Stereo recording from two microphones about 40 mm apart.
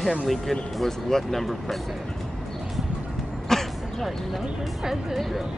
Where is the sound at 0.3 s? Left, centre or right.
Centre.